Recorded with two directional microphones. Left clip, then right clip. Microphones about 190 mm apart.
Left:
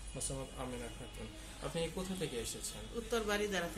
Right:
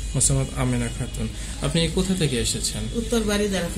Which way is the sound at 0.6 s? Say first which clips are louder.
Right 18 dB; 40° right (ahead or behind).